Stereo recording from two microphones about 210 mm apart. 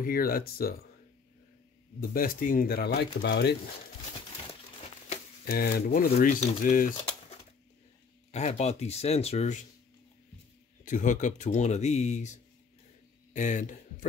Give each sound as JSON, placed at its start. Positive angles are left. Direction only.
{"t": 0.0, "sound": "speech", "side_deg": 45}
{"t": 2.0, "sound": "speech", "side_deg": 45}
{"t": 5.5, "sound": "speech", "side_deg": 45}
{"t": 10.9, "sound": "speech", "side_deg": 35}